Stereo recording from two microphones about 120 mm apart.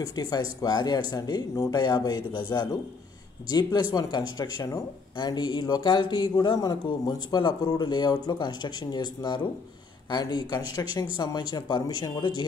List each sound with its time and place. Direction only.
0.0 s speech: 35° left (ahead or behind)